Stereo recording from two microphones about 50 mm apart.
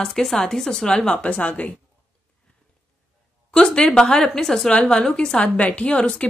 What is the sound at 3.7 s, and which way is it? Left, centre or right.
Speech, centre.